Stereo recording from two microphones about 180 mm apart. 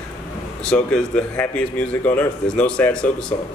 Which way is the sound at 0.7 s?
5° left (ahead or behind).